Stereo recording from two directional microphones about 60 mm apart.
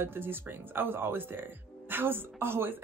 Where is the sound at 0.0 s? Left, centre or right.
Right.